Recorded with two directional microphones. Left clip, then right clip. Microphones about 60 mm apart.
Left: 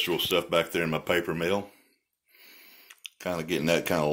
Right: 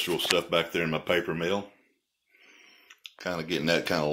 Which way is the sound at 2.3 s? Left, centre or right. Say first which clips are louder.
Left 2 dB; left.